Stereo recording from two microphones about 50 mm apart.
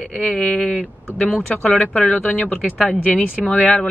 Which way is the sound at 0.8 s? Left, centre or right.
Left.